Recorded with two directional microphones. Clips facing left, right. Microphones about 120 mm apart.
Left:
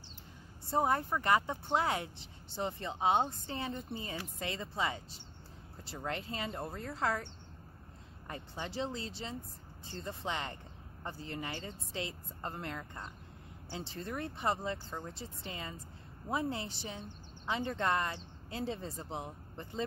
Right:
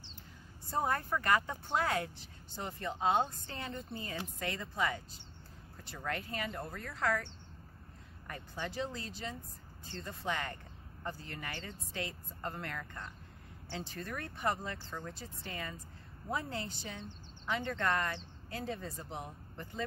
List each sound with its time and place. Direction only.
0.7 s speech: 20° left (ahead or behind)
8.3 s speech: 25° left (ahead or behind)